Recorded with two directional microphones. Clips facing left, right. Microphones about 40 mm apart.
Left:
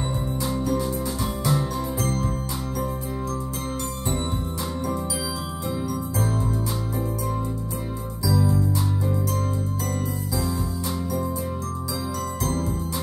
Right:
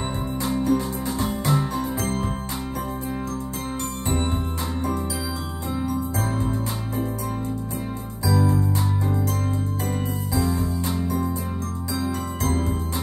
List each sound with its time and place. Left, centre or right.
0.0 s music: right
5.7 s music: right
8.3 s music: right
12.2 s music: right